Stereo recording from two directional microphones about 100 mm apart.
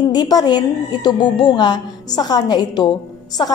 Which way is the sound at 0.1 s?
45° left (ahead or behind).